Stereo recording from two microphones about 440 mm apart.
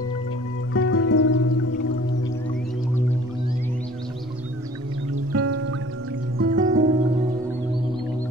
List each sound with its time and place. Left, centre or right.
0.7 s music: left
5.1 s music: right